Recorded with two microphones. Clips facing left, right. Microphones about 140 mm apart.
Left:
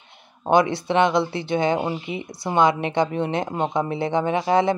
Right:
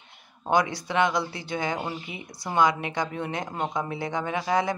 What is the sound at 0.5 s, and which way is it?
Speech, 25° left (ahead or behind).